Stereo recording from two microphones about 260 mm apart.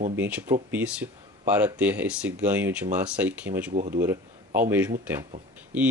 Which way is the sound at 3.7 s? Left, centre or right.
Right.